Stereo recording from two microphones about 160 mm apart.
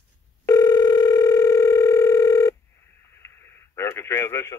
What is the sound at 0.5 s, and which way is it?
Telephone, 25° left (ahead or behind).